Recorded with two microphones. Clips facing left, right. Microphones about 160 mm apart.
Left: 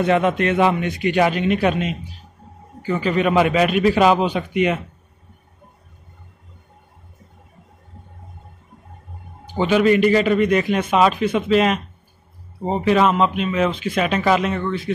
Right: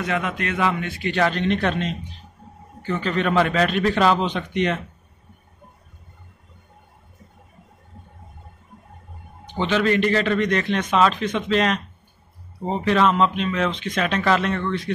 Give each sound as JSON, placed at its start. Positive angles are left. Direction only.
{"t": 0.0, "sound": "a man's voice", "side_deg": 25}
{"t": 9.5, "sound": "a man's voice", "side_deg": 10}